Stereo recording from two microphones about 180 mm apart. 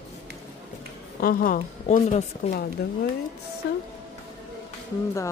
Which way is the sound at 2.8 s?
60° left (ahead or behind).